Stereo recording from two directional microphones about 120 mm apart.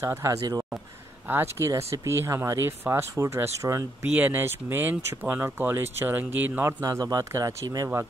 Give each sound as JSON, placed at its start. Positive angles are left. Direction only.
{"t": 0.0, "sound": "speech", "side_deg": -25}
{"t": 6.8, "sound": "speech", "side_deg": -30}